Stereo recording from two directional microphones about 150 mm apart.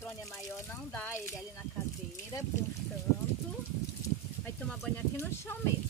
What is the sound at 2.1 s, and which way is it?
Speech, 20° left (ahead or behind).